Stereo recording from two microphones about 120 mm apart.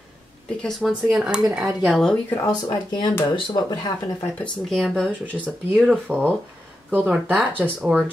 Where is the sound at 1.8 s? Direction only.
5° left (ahead or behind).